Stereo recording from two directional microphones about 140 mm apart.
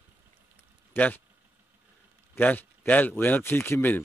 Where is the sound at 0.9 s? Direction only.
10° left (ahead or behind).